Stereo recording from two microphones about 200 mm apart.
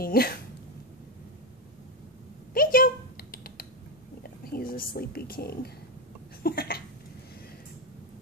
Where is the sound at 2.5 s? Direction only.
45° left (ahead or behind).